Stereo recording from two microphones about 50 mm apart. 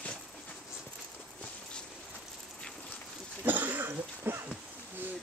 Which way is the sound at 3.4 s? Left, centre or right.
Right.